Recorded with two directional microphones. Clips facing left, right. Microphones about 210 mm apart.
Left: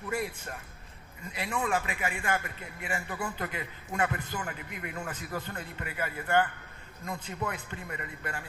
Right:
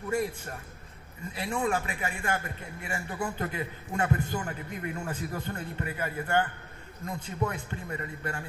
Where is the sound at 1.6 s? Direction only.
35° right (ahead or behind).